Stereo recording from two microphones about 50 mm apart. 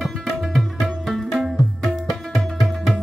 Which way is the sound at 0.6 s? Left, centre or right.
Centre.